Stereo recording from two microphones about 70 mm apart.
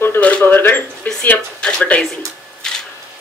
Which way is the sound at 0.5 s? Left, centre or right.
Left.